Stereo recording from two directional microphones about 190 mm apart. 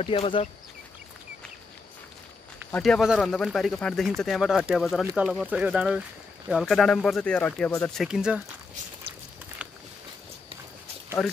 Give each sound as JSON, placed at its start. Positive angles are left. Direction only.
{"t": 0.0, "sound": "speech", "side_deg": 30}
{"t": 2.7, "sound": "speech", "side_deg": 0}
{"t": 8.1, "sound": "speech", "side_deg": -5}
{"t": 9.6, "sound": "a sound", "side_deg": -5}
{"t": 11.2, "sound": "speech", "side_deg": 0}